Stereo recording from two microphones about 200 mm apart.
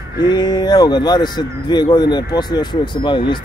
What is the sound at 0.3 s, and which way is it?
Speech, 20° left (ahead or behind).